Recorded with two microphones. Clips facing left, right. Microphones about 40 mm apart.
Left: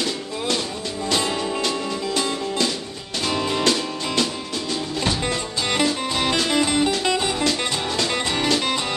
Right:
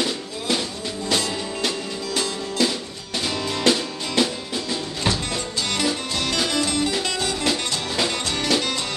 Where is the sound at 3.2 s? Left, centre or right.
Centre.